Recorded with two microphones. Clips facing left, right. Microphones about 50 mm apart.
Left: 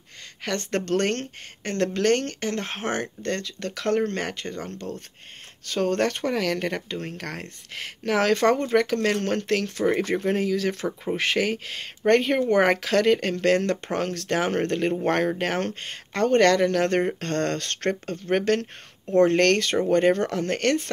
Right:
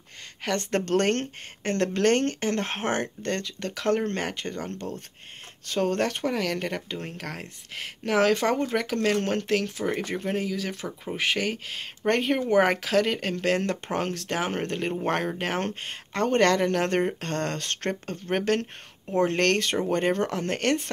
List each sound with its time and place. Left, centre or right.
0.6 s speech: right
5.7 s speech: centre